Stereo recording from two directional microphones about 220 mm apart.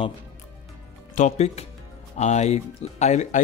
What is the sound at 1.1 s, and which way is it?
Speech, 30° left (ahead or behind).